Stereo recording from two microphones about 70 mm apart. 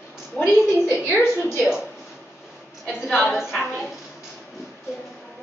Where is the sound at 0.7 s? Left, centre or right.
Left.